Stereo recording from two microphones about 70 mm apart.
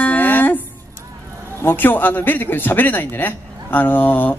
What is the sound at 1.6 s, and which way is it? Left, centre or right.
Speech, left.